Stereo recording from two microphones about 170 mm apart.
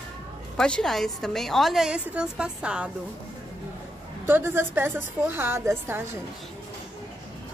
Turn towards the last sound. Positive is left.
turn(degrees=-15)  # may be behind; listen again after turning